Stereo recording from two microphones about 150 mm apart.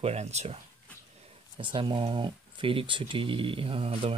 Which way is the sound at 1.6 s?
30° right (ahead or behind).